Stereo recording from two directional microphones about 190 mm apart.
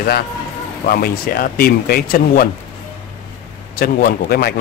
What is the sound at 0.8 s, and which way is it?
A man's voice, 55° left (ahead or behind).